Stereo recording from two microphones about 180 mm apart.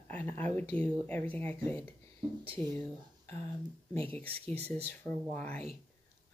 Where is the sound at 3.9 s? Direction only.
35° right (ahead or behind).